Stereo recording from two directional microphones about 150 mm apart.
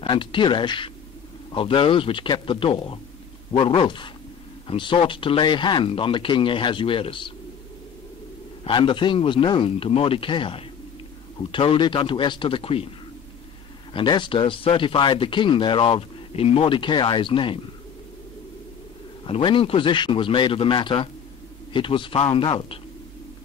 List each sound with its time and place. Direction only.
0.0 s speech: 35° left (ahead or behind)
8.6 s speech: 35° left (ahead or behind)
13.9 s speech: 30° left (ahead or behind)
19.2 s speech: 35° left (ahead or behind)